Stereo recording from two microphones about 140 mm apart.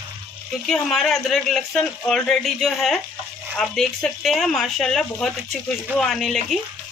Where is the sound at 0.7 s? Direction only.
5° left (ahead or behind).